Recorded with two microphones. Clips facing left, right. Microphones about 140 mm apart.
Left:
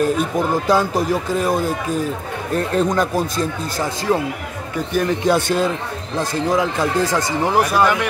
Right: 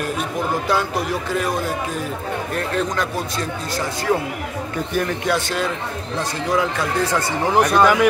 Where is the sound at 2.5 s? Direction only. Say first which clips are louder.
Left 6 dB; 40° left (ahead or behind).